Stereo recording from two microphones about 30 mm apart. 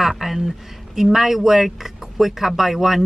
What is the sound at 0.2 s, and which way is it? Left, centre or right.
Speech, centre.